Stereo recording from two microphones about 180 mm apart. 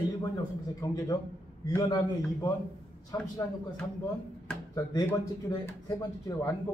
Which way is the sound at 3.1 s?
15° left (ahead or behind).